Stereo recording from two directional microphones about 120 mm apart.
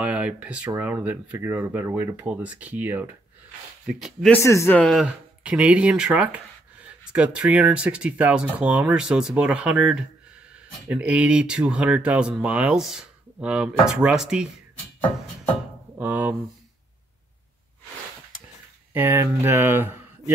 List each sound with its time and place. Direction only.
0.0 s speech: 10° right (ahead or behind)
3.8 s speech: centre (ahead or behind)
4.3 s speech: 25° left (ahead or behind)
4.9 s speech: 10° right (ahead or behind)
16.0 s speech: 15° right (ahead or behind)
18.9 s speech: 20° right (ahead or behind)